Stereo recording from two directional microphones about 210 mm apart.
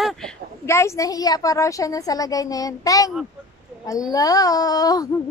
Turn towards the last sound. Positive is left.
turn(degrees=15)  # may be behind; listen again after turning